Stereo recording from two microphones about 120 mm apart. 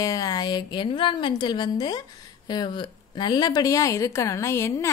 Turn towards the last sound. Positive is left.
turn(degrees=25)  # may be behind; listen again after turning